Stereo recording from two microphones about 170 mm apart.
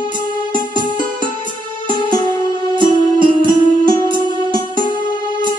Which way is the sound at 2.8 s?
30° right (ahead or behind).